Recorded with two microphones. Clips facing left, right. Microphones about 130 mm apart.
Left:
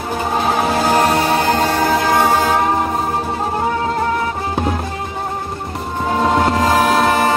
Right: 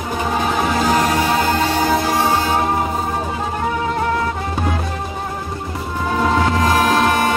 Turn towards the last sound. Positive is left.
turn(degrees=30)  # may be behind; listen again after turning